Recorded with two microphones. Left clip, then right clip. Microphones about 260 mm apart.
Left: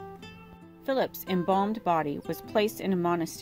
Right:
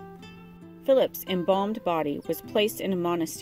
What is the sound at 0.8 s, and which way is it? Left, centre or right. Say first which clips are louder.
Speech: right 7 dB; left.